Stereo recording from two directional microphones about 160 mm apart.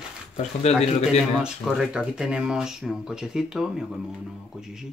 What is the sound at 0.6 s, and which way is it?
Speech, 40° left (ahead or behind).